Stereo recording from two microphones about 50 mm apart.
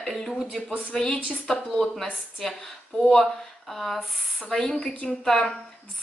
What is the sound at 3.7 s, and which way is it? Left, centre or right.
A woman's voice, centre.